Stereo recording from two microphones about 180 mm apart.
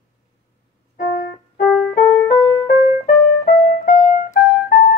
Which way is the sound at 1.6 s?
Centre (ahead or behind).